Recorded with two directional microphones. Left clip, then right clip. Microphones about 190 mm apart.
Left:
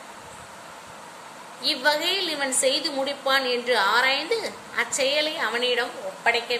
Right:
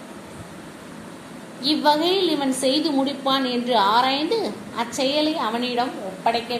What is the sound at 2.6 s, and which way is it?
Speech, 60° left (ahead or behind).